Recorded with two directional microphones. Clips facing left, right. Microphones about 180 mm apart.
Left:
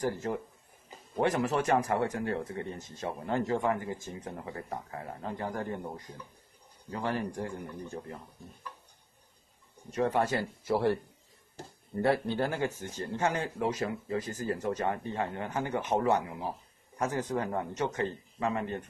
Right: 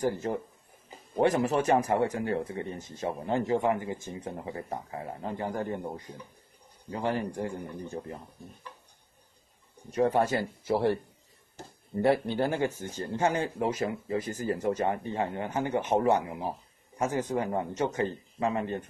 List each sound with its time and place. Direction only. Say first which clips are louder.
0.0 s speech: right 3 dB; 30° right (ahead or behind)
9.9 s speech: right 3 dB; 30° right (ahead or behind)
10.7 s speech: right 1 dB; 15° right (ahead or behind)